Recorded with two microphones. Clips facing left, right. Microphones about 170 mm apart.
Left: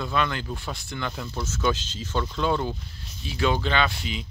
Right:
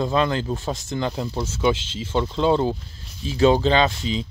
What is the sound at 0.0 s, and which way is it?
Speech, 30° right (ahead or behind).